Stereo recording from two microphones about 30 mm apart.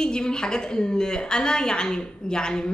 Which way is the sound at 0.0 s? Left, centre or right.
Left.